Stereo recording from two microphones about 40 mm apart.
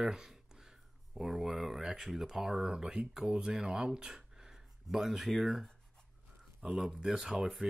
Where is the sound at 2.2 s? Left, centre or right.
Centre.